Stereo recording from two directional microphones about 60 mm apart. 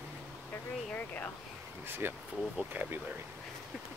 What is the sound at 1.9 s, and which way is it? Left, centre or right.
Speech, right.